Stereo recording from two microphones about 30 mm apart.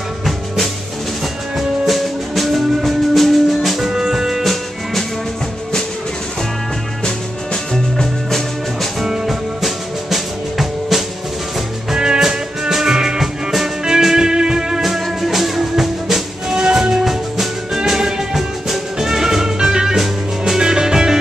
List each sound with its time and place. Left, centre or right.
1.9 s music: centre
3.8 s music: centre
9.0 s music: centre
11.9 s music: right
12.2 s music: centre
13.2 s music: centre
14.1 s music: right
14.8 s music: centre